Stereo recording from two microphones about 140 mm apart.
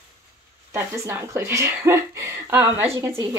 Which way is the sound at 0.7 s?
15° right (ahead or behind).